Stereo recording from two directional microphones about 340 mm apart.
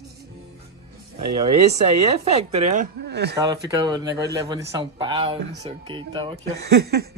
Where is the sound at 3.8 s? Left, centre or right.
Centre.